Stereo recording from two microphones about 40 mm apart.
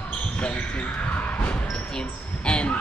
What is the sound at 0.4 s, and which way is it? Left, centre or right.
Speech, left.